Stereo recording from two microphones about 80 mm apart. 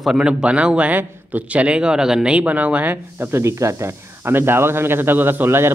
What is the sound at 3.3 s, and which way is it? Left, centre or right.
Speech, right.